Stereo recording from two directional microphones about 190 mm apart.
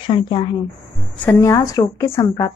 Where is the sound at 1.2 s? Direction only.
15° left (ahead or behind).